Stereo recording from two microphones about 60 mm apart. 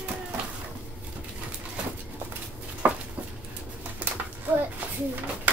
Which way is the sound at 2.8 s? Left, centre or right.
Right.